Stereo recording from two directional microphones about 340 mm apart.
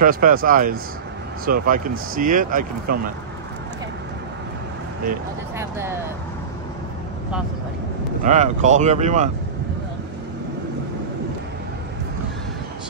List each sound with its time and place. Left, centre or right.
0.0 s speech: right
8.2 s speech: right